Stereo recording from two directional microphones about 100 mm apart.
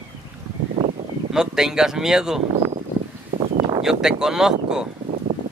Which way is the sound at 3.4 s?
60° right (ahead or behind).